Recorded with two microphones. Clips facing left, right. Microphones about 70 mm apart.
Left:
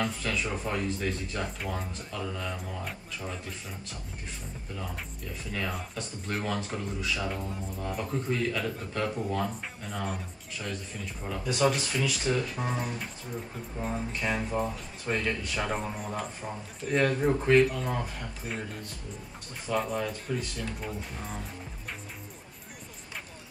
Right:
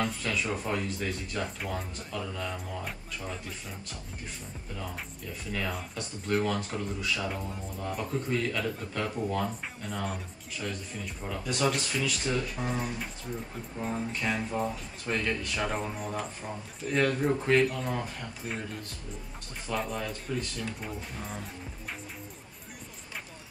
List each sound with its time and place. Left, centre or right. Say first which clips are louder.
0.0 s speech: even; centre
5.5 s speech: even; centre